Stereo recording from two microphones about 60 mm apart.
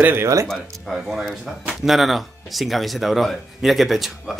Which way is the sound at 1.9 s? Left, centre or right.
Centre.